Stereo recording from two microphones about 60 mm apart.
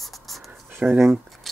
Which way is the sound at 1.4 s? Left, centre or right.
Centre.